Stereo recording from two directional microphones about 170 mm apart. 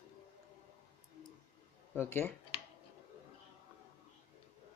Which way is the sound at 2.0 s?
15° left (ahead or behind).